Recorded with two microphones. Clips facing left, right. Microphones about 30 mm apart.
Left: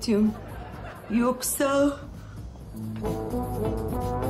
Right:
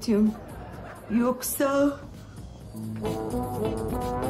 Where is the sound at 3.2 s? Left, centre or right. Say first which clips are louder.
Right 2 dB; right.